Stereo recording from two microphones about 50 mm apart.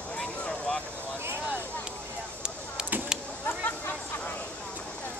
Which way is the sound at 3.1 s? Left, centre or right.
Centre.